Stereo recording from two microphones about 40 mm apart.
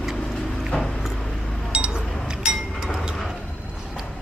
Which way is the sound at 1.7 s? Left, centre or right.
Right.